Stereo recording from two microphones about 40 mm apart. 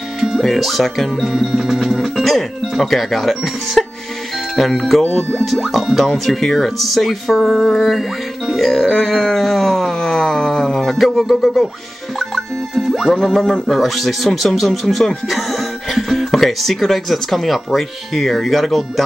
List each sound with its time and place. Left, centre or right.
0.4 s speech: centre
5.0 s speech: centre
5.4 s speech: centre
7.4 s music: centre
8.7 s speech: centre
12.2 s music: centre
13.3 s speech: centre
13.7 s speech: centre